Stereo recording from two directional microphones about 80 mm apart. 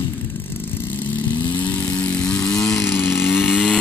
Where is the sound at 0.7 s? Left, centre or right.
Left; by 2.8 s centre.